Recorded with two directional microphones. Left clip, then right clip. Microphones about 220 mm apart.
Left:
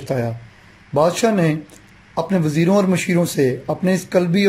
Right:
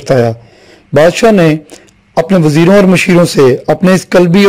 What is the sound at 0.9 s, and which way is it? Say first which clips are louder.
A man's voice: right 10 dB; 40° right (ahead or behind).